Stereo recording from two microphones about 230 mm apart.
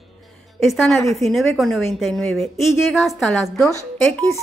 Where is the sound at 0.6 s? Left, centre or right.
Centre.